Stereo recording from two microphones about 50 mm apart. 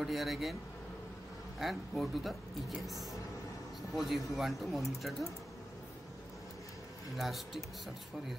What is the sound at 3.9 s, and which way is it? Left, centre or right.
Speech, centre.